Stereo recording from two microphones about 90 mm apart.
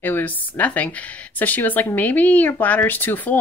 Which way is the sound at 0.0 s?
20° left (ahead or behind).